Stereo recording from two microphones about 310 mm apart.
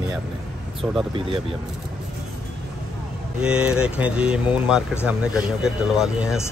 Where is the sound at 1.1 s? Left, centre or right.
Centre.